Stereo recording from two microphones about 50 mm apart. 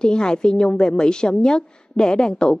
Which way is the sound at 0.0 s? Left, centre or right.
Centre.